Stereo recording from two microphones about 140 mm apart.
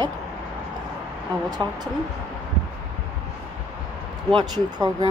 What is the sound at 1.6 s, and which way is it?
Speech, 30° right (ahead or behind).